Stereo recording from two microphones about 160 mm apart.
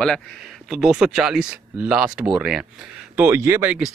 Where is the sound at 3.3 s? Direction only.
15° right (ahead or behind).